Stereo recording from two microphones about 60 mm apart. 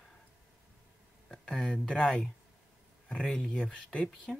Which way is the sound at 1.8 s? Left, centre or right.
Centre.